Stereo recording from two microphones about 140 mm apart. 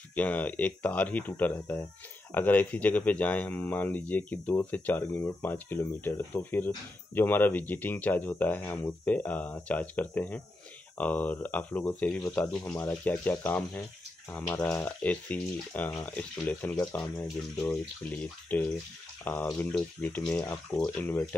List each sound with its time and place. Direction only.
0.1 s speech: 10° left (ahead or behind)